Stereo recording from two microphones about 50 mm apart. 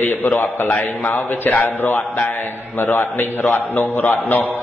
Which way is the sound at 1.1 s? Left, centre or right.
Left.